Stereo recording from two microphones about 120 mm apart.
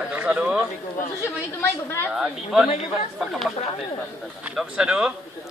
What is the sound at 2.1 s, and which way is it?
A woman's voice, 5° right (ahead or behind).